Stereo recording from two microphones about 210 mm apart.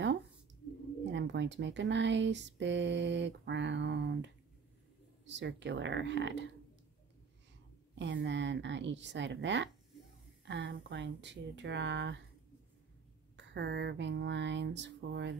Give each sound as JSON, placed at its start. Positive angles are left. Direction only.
{"t": 1.1, "sound": "speech", "side_deg": -60}
{"t": 7.9, "sound": "speech", "side_deg": -60}
{"t": 13.4, "sound": "speech", "side_deg": -55}